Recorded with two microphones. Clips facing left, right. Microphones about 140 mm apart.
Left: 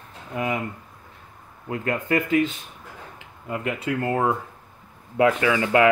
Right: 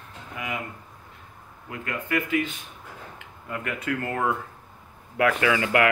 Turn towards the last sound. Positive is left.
turn(degrees=25)  # may be behind; listen again after turning